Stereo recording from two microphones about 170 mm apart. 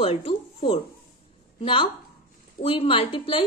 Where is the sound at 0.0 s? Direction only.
35° left (ahead or behind).